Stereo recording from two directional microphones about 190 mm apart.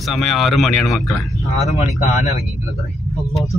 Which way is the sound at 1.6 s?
35° left (ahead or behind).